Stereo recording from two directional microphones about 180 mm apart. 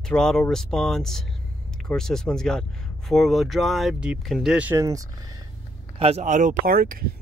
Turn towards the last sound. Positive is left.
turn(degrees=-55)  # may be behind; listen again after turning